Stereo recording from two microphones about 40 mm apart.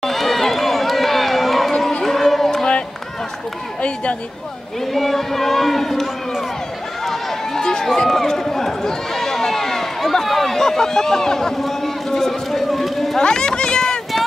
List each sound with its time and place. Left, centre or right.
0.0 s run: centre
1.7 s crowd: centre
2.0 s a sound: centre
3.8 s speech: left
4.9 s speech: centre
7.1 s a man's voice: centre
13.2 s a sound: centre